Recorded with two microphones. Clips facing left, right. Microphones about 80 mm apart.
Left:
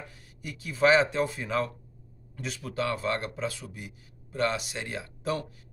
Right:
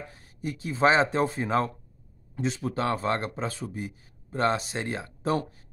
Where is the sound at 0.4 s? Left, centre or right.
Right.